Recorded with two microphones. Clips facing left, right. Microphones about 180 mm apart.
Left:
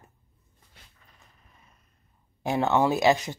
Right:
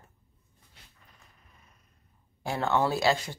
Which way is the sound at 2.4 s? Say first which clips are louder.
Left 4 dB; 20° left (ahead or behind).